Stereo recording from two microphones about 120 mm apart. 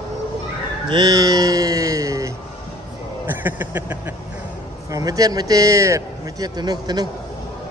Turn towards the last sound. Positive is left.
turn(degrees=-35)  # may be behind; listen again after turning